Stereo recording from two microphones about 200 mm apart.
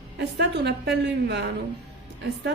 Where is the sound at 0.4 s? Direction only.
60° right (ahead or behind).